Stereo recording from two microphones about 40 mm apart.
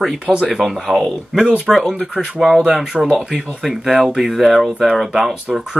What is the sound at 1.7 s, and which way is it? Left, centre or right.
Speech, centre.